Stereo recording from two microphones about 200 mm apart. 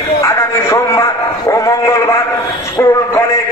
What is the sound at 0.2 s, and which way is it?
A man's voice, 15° left (ahead or behind).